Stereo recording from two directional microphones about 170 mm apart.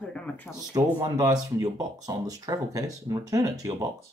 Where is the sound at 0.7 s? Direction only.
20° right (ahead or behind).